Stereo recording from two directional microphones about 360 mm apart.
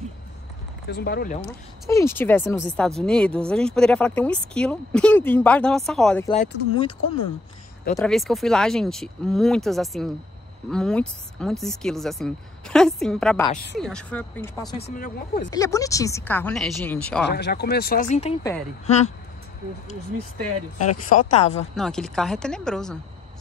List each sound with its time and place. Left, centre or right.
0.8 s speech: left
1.9 s speech: centre
6.3 s speech: centre
7.9 s speech: centre
15.0 s speech: left
15.5 s speech: centre
17.3 s speech: left
20.7 s speech: left
21.1 s speech: left
21.7 s speech: centre